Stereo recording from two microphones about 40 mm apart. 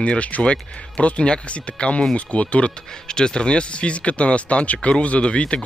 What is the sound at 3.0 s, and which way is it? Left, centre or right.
Speech, left.